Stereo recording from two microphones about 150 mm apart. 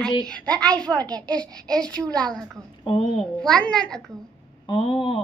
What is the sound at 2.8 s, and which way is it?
Speech, 40° left (ahead or behind).